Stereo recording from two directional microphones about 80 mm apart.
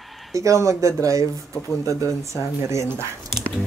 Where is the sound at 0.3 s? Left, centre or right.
Right.